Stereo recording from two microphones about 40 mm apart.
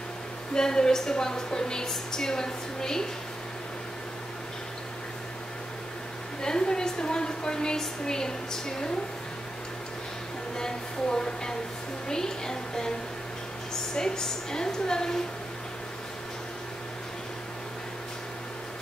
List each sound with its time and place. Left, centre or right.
0.6 s a woman's voice: centre
6.4 s a woman's voice: centre
10.6 s a woman's voice: centre
13.9 s a woman's voice: centre